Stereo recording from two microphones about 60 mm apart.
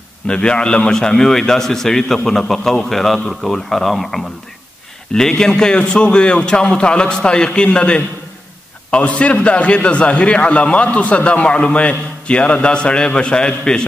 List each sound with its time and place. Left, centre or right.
0.3 s a man's voice: centre